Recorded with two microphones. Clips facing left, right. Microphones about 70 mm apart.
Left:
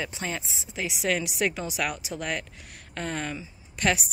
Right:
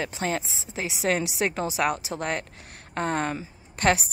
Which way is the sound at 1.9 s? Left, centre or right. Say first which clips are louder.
Right 3 dB; right.